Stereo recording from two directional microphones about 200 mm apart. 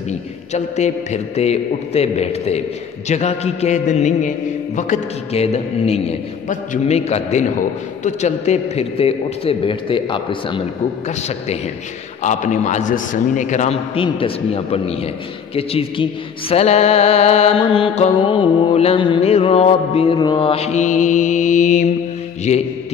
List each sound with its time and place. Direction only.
0.5 s a man's voice: 35° left (ahead or behind)